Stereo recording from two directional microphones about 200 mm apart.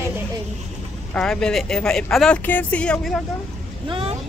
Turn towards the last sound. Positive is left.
turn(degrees=-30)  # may be behind; listen again after turning